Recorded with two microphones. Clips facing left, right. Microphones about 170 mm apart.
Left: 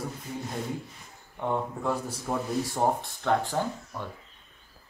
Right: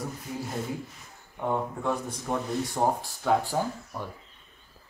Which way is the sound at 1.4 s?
Centre (ahead or behind).